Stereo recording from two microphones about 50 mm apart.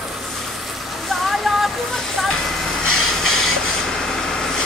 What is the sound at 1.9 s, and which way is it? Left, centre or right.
Fire, centre.